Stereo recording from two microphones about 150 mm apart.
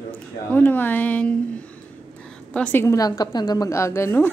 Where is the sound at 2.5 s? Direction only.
10° left (ahead or behind).